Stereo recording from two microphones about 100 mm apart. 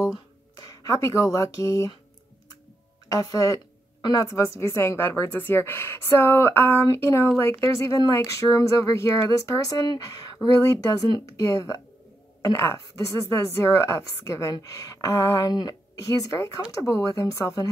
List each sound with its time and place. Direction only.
0.6 s speech: 35° left (ahead or behind)
3.1 s a woman's voice: 35° left (ahead or behind)